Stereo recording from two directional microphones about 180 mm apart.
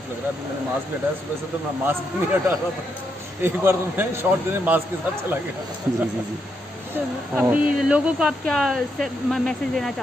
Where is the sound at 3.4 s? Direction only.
10° right (ahead or behind).